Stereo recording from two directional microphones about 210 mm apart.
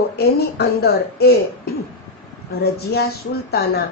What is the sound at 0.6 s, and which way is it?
Speech, 50° left (ahead or behind).